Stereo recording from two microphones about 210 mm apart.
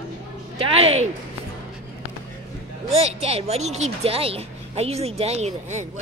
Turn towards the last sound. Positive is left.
turn(degrees=-30)  # may be behind; listen again after turning